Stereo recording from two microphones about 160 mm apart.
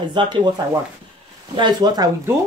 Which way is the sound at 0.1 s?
30° right (ahead or behind).